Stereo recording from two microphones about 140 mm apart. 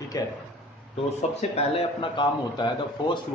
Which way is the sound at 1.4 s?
50° left (ahead or behind).